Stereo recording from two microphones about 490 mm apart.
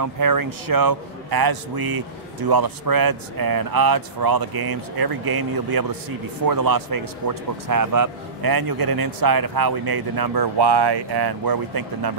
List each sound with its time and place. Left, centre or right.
0.0 s a man's voice: right